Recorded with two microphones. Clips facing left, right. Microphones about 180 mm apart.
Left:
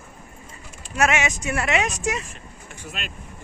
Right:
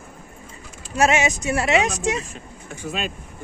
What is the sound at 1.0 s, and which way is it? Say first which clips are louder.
Speech: right 3 dB; 35° right (ahead or behind).